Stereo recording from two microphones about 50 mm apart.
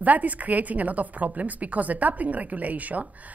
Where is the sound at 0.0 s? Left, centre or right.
Right.